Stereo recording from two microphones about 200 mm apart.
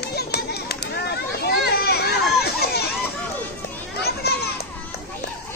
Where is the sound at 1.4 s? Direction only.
55° left (ahead or behind).